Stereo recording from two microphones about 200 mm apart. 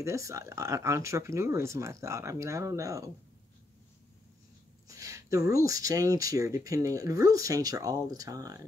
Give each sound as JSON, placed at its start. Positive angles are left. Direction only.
{"t": 0.0, "sound": "speech", "side_deg": -15}
{"t": 4.8, "sound": "a sound", "side_deg": -15}
{"t": 5.7, "sound": "speech", "side_deg": -15}